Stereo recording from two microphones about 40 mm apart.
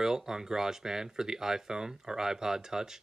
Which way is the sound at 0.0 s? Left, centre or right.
Centre.